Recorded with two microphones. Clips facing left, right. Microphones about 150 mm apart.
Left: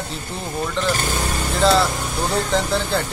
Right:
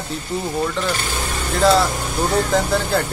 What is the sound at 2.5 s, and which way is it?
Speech, 5° right (ahead or behind).